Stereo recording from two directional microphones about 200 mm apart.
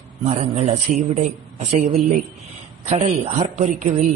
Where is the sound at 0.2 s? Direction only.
30° right (ahead or behind).